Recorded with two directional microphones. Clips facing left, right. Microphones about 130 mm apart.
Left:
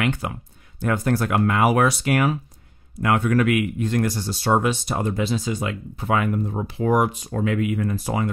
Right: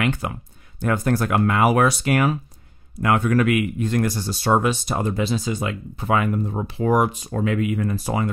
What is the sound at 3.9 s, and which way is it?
Speech, 45° right (ahead or behind).